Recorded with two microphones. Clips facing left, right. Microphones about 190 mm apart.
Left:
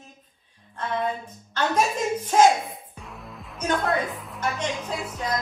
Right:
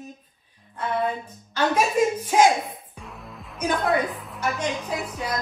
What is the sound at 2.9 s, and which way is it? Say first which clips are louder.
Music: even; centre (ahead or behind).